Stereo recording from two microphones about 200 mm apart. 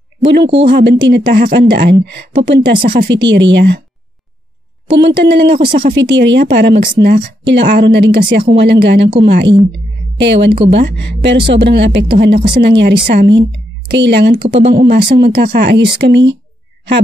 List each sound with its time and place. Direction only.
0.4 s speech: 25° right (ahead or behind)
0.7 s speech: 55° right (ahead or behind)
4.9 s speech: 55° right (ahead or behind)
5.6 s speech: 25° right (ahead or behind)
5.9 s speech: 60° right (ahead or behind)
12.4 s speech: 25° right (ahead or behind)
12.6 s speech: 55° right (ahead or behind)